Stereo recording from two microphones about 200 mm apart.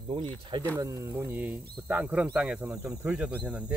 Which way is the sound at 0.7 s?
15° right (ahead or behind).